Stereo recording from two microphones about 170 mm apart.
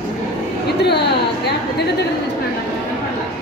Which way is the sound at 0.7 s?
75° left (ahead or behind).